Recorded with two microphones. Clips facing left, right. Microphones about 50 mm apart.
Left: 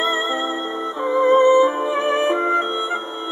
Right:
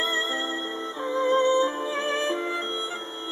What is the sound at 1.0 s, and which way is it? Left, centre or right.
Music, left.